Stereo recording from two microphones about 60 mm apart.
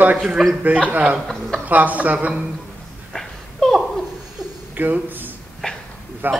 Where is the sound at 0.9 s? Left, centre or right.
Centre.